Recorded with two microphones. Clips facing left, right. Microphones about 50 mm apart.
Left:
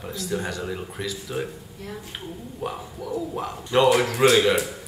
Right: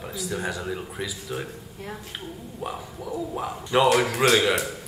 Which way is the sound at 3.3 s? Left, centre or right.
Centre.